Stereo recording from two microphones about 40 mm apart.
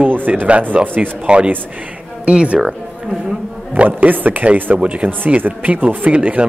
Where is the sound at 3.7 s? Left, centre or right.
Right.